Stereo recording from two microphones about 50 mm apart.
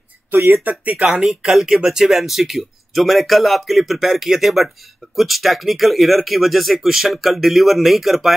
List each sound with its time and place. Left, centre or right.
0.5 s speech: right
1.2 s speech: centre